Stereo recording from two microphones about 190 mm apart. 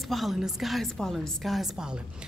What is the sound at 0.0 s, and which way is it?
A woman's voice, centre (ahead or behind).